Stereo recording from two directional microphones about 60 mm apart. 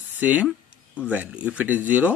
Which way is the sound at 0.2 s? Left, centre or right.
Right.